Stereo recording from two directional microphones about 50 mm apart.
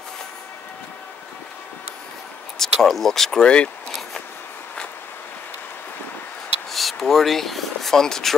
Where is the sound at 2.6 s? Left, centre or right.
Centre.